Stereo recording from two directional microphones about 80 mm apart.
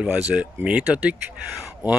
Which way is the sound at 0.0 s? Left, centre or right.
Centre.